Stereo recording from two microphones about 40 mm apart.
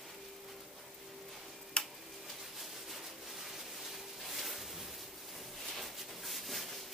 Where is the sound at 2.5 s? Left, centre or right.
Centre.